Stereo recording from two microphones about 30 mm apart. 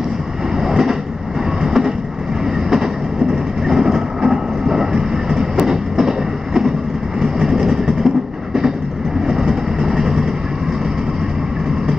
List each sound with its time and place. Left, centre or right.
0.6 s train: centre
3.6 s train: centre
9.3 s vehicle: centre